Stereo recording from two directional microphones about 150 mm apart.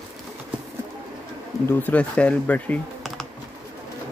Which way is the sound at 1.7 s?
10° left (ahead or behind).